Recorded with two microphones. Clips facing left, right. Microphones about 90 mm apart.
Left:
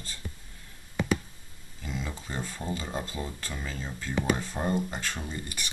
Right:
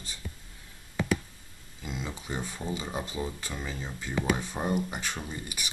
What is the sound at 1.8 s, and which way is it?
Speech, 15° right (ahead or behind).